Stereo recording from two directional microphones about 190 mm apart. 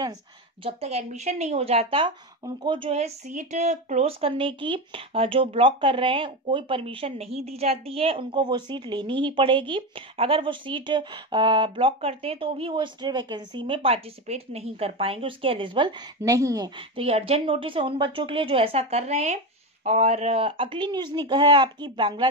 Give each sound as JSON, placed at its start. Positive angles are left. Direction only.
{"t": 0.7, "sound": "a woman's voice", "side_deg": -35}